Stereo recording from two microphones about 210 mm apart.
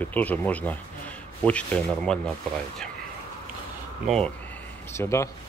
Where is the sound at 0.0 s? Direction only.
5° left (ahead or behind).